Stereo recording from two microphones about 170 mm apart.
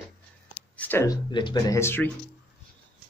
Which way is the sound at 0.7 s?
10° left (ahead or behind).